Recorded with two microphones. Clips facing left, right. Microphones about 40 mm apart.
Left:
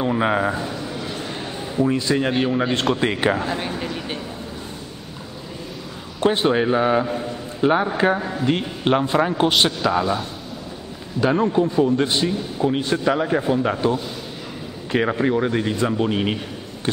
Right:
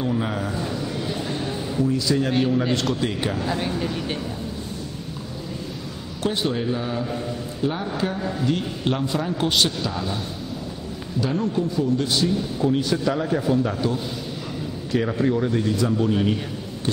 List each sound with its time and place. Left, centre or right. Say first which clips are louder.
0.0 s a man's voice: left 5 dB; left
0.6 s a sound: even; centre
1.3 s a sound: right 1 dB; centre
2.0 s a man's voice: left 1 dB; left
3.4 s speech: even; centre
6.2 s a man's voice: left 6 dB; left
8.2 s a man's voice: left 1 dB; centre
8.5 s a man's voice: left 5 dB; left
9.7 s speech: left 6 dB; centre
11.2 s a man's voice: left 6 dB; left